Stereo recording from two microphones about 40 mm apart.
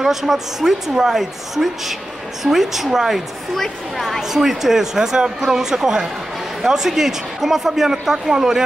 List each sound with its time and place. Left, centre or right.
0.0 s speech: centre
3.5 s speech: centre
4.2 s speech: centre